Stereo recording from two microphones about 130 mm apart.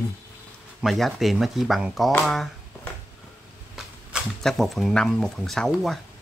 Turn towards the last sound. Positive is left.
turn(degrees=0)  # may be behind; listen again after turning